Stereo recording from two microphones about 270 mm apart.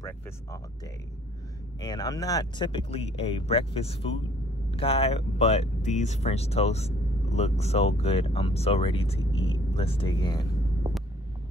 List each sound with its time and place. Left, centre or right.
1.8 s speech: centre